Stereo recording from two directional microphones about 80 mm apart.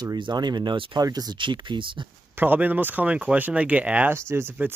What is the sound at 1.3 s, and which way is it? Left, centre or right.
Speech, right.